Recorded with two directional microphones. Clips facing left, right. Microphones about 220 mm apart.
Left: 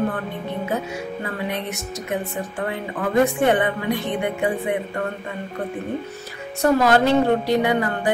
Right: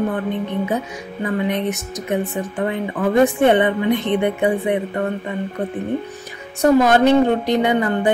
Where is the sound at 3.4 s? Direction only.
20° right (ahead or behind).